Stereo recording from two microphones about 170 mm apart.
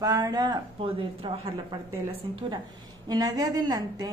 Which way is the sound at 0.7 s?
35° right (ahead or behind).